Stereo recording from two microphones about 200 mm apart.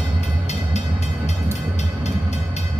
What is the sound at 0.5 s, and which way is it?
Train, 35° left (ahead or behind).